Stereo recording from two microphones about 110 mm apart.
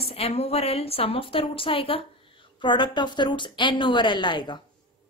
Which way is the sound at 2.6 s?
45° left (ahead or behind).